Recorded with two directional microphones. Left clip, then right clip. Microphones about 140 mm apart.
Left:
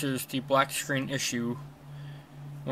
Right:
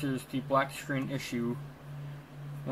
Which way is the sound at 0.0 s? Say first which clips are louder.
Left 3 dB; 15° left (ahead or behind).